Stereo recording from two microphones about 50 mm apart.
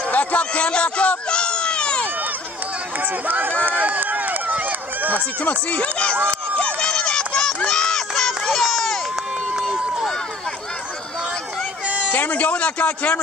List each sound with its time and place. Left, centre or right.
0.1 s baby cry: left
3.3 s speech: right
3.6 s run: right
5.4 s a man's voice: left
6.6 s run: centre
12.1 s a man's voice: left